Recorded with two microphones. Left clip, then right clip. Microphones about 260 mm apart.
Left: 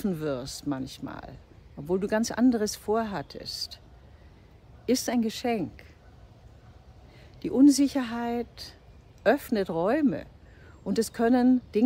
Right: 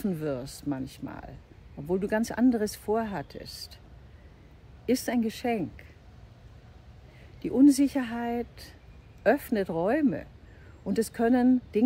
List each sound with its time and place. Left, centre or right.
0.0 s speech: centre
4.8 s speech: centre
7.4 s speech: centre